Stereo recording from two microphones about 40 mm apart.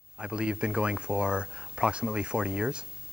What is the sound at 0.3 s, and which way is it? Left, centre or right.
Speech, right.